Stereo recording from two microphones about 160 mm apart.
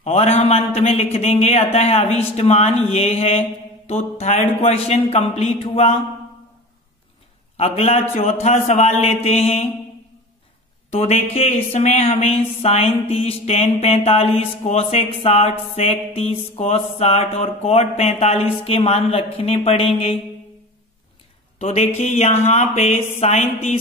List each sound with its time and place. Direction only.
0.0 s speech: 40° left (ahead or behind)
7.5 s speech: 40° left (ahead or behind)
10.9 s speech: 40° left (ahead or behind)
21.5 s speech: 45° left (ahead or behind)